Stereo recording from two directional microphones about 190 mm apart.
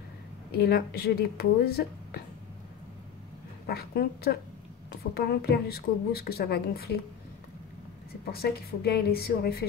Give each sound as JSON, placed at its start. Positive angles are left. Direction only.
{"t": 0.5, "sound": "speech", "side_deg": 55}
{"t": 3.6, "sound": "a woman's voice", "side_deg": 55}
{"t": 8.3, "sound": "speech", "side_deg": 55}